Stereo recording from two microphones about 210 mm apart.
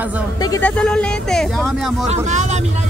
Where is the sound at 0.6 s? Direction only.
5° left (ahead or behind).